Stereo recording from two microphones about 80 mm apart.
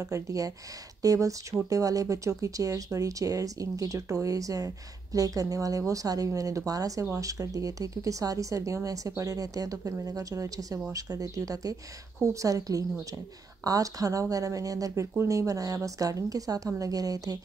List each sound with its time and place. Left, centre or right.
0.0 s speech: right